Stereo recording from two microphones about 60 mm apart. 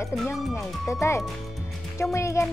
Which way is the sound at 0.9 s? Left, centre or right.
Left.